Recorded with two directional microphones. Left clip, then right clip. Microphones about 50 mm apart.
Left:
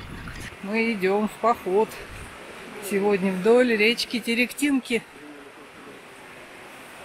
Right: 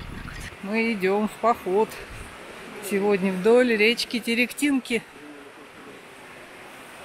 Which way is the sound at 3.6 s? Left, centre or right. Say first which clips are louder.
Even; right.